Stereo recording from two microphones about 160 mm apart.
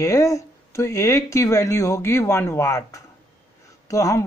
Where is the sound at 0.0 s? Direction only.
20° left (ahead or behind).